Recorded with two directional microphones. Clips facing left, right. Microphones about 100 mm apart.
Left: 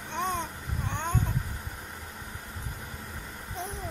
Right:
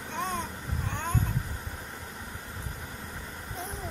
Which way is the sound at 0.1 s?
20° left (ahead or behind).